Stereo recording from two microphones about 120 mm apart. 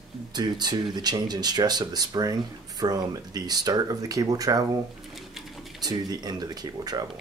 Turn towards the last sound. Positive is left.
turn(degrees=-35)  # may be behind; listen again after turning